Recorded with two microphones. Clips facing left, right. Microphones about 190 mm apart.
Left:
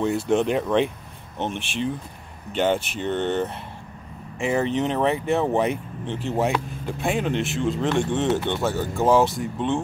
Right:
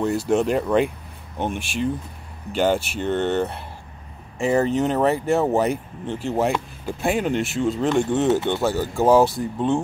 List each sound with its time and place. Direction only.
0.0 s speech: centre (ahead or behind)
4.4 s speech: 40° right (ahead or behind)
5.3 s speech: 5° right (ahead or behind)
9.1 s speech: 35° right (ahead or behind)